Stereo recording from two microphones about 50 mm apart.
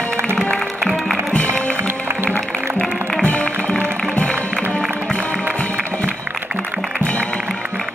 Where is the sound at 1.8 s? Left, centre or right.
Right.